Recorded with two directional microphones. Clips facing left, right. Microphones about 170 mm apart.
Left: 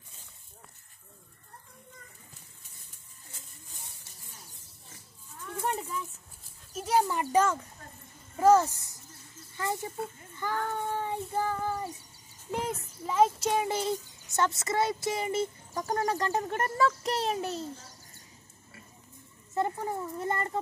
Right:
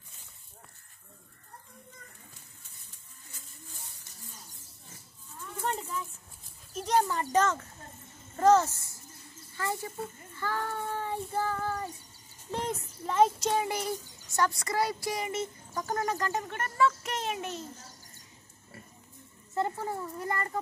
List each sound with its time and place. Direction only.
5.6 s rattle: 10° left (ahead or behind)
6.7 s a sound: 5° left (ahead or behind)
8.4 s a child's voice: 10° left (ahead or behind)
13.5 s a sound: 15° left (ahead or behind)
13.7 s speech: 25° left (ahead or behind)
19.5 s speech: 20° left (ahead or behind)